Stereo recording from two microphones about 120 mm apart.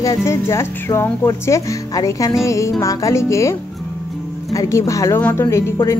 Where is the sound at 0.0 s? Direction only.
25° left (ahead or behind).